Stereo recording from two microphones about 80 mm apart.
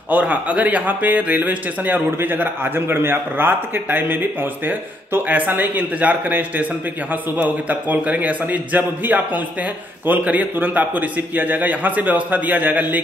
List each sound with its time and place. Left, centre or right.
0.1 s speech: centre